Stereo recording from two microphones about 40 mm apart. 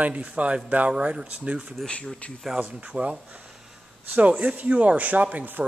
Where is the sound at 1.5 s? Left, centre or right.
Right.